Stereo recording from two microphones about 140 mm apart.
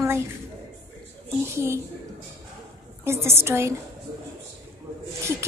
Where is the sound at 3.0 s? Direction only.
20° right (ahead or behind).